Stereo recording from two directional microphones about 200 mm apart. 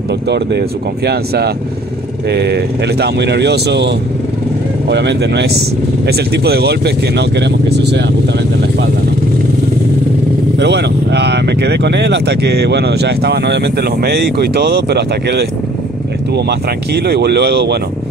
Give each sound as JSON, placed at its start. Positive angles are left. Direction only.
{"t": 0.3, "sound": "speech", "side_deg": -55}
{"t": 10.6, "sound": "speech", "side_deg": -60}